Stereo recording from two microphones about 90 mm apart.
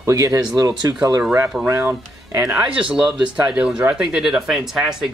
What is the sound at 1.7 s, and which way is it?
Speech, 30° right (ahead or behind).